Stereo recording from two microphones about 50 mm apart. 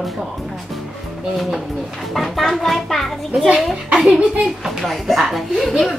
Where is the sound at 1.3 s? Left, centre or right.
Centre.